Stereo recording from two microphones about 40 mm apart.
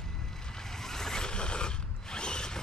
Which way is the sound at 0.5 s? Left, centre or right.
Centre.